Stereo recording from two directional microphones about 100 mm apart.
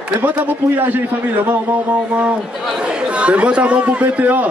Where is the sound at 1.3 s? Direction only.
15° right (ahead or behind).